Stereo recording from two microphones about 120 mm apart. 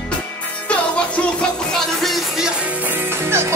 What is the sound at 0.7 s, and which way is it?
Music, 10° left (ahead or behind).